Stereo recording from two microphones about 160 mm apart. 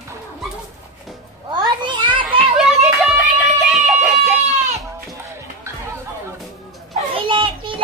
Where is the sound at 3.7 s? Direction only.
Centre (ahead or behind).